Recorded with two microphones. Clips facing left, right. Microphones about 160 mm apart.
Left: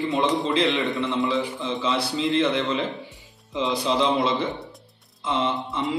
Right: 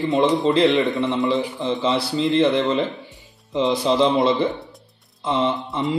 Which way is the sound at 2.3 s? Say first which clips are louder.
Right 5 dB; 40° right (ahead or behind).